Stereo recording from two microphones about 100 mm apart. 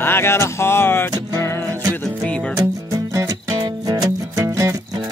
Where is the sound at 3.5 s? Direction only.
45° right (ahead or behind).